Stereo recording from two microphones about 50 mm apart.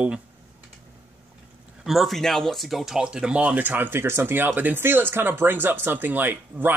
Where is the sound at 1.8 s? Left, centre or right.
Centre.